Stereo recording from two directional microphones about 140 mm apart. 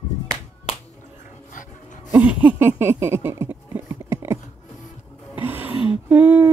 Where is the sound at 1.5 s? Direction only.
70° left (ahead or behind).